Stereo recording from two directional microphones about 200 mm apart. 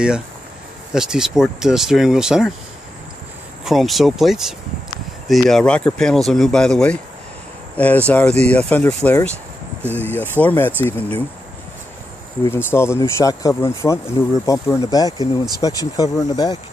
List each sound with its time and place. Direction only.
0.9 s speech: 5° right (ahead or behind)
3.6 s speech: centre (ahead or behind)
12.4 s speech: 10° left (ahead or behind)